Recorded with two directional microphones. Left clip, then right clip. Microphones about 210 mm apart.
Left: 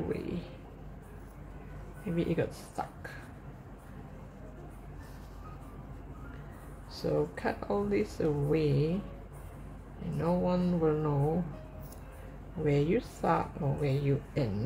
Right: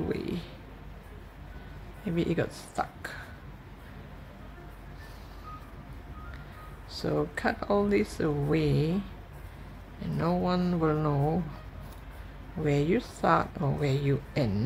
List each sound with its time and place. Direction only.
0.1 s a sound: 20° right (ahead or behind)
2.1 s a woman's voice: 15° right (ahead or behind)
6.9 s speech: 20° right (ahead or behind)
10.1 s speech: 20° right (ahead or behind)
12.6 s a woman's voice: 15° right (ahead or behind)